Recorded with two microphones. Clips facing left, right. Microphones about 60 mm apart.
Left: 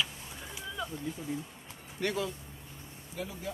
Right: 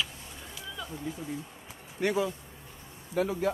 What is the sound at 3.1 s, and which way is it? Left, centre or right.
Speech, right.